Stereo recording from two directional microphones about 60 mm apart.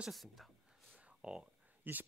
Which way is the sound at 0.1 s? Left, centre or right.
Centre.